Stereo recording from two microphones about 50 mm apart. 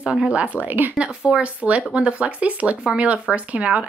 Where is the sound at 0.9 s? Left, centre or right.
Right.